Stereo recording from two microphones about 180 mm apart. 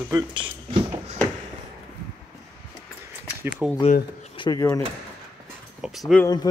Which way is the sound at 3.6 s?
5° right (ahead or behind).